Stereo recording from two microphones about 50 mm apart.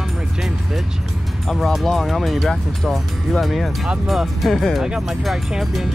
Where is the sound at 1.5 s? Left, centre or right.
Centre.